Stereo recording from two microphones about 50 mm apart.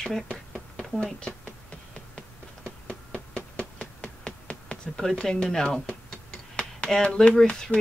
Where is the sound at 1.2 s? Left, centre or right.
Left.